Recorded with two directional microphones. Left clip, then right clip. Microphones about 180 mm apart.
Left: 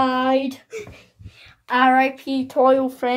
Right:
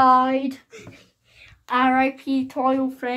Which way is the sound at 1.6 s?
20° left (ahead or behind).